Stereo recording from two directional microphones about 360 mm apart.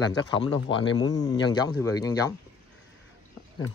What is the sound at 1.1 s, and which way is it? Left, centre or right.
Speech, centre.